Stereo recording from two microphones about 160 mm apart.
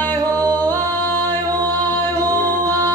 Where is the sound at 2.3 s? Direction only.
25° right (ahead or behind).